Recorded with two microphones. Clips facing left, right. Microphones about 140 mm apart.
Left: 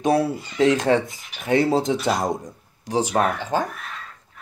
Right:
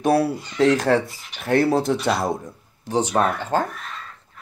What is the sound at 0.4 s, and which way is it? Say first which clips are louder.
Speech: right 1 dB; 10° left (ahead or behind).